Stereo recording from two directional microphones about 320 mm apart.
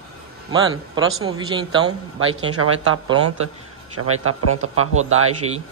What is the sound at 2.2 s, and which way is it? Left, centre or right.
Speech, right.